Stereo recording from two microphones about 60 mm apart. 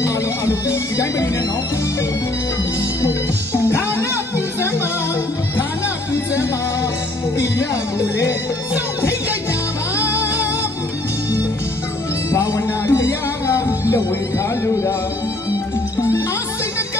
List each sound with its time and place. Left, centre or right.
0.0 s music: left
3.5 s music: left
9.9 s music: left
12.3 s music: left